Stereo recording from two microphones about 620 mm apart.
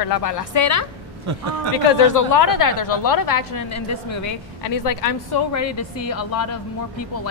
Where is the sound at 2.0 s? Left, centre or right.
Left.